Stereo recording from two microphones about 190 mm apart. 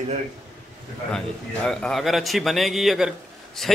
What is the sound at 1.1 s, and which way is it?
A man's voice, 5° left (ahead or behind).